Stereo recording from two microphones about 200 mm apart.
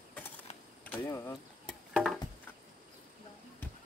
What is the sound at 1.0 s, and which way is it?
Speech, 15° left (ahead or behind).